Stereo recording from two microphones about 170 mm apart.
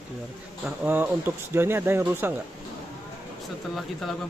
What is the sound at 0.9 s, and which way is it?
Speech, 10° right (ahead or behind).